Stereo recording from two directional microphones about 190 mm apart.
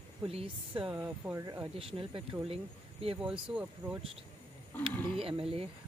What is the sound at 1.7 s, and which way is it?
Speech, 30° right (ahead or behind).